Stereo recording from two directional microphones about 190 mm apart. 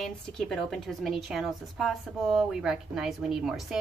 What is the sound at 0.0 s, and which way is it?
A woman's voice, centre (ahead or behind).